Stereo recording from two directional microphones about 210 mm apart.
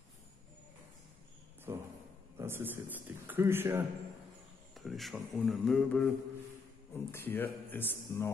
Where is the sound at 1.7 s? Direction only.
15° right (ahead or behind).